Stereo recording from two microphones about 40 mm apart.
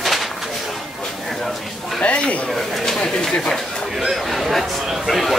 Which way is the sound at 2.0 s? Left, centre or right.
Left.